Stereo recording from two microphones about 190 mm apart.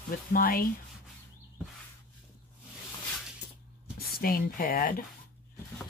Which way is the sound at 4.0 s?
50° left (ahead or behind).